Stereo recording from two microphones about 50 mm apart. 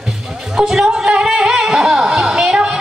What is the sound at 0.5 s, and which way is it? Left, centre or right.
Music, centre.